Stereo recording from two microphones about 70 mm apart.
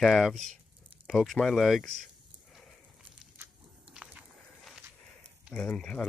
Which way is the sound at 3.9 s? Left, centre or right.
Centre.